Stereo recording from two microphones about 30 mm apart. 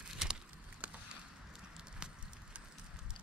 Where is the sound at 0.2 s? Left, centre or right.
Centre.